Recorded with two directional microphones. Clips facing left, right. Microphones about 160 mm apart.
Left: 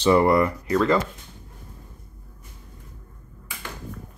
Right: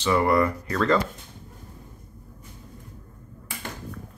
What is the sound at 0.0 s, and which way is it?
Speech, 25° left (ahead or behind).